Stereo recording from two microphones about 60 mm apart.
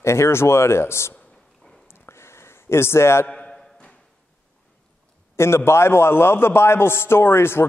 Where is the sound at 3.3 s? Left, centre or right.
Left.